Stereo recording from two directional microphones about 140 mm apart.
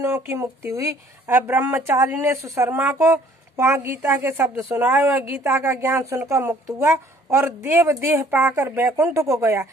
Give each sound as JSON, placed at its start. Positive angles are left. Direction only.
{"t": 0.0, "sound": "speech", "side_deg": -20}